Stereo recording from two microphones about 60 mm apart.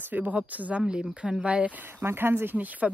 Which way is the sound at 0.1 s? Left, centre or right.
Right.